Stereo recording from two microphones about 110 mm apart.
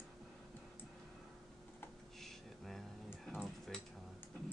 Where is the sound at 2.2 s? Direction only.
Centre (ahead or behind).